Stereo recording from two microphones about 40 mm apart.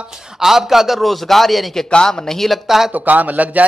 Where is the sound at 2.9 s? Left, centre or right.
Right.